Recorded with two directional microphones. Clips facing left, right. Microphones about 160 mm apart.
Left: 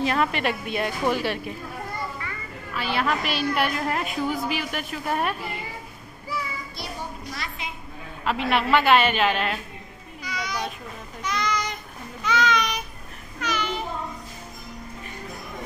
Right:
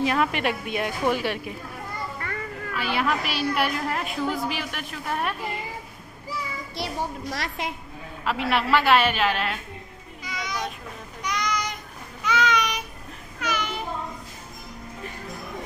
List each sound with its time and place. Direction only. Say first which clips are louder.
0.0 s speech: even; 10° right (ahead or behind)
2.2 s music: right 3 dB; 55° right (ahead or behind)
2.7 s a woman's voice: even; 10° right (ahead or behind)
6.7 s a sound: right 5 dB; 90° right
8.2 s a woman's voice: left 1 dB; centre (ahead or behind)
10.2 s a sound: left 1 dB; 20° right (ahead or behind)